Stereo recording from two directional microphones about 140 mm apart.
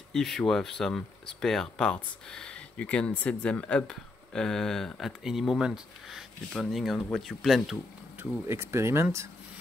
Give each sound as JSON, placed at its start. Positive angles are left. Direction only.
{"t": 0.1, "sound": "speech", "side_deg": 0}
{"t": 8.2, "sound": "speech", "side_deg": -20}